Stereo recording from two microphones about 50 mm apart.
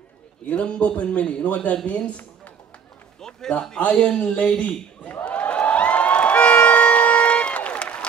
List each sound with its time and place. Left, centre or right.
0.5 s a man's voice: left
3.2 s a man's voice: centre
5.2 s a sound: left